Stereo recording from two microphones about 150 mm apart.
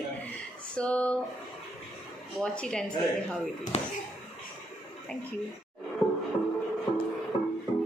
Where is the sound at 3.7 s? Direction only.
45° left (ahead or behind).